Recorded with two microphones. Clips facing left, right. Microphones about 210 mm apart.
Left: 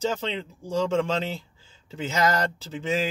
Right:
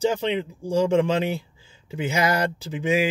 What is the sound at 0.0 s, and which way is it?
Speech, 15° right (ahead or behind).